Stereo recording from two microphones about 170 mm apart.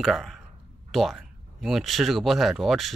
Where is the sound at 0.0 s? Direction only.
Centre (ahead or behind).